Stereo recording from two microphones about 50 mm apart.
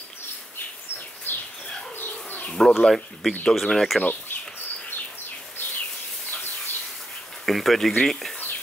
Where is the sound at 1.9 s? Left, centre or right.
Left.